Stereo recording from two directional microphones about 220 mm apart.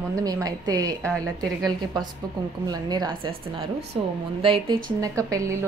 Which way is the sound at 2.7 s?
20° right (ahead or behind).